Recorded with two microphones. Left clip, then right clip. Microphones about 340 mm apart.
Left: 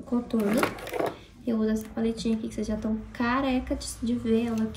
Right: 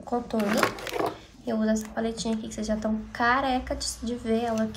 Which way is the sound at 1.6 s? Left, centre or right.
Right.